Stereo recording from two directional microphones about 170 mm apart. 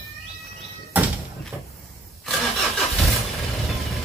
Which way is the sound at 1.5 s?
5° right (ahead or behind).